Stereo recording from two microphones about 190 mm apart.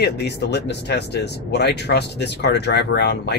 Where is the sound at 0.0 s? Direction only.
60° left (ahead or behind).